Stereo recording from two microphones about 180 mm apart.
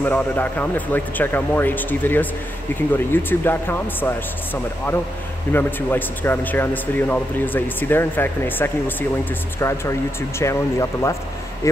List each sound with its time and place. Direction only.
0.0 s speech: 10° left (ahead or behind)
5.5 s speech: 10° left (ahead or behind)